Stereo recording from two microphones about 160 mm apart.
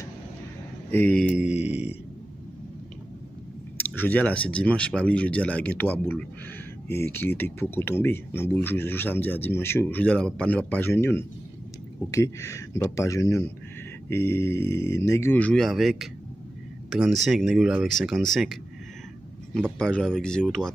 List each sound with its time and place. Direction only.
0.9 s speech: 10° left (ahead or behind)
1.3 s mantra: 5° right (ahead or behind)
3.7 s speech: 15° left (ahead or behind)
19.8 s speech: 5° left (ahead or behind)